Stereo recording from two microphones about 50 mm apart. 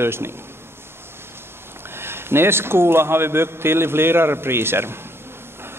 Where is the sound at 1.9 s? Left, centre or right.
Right.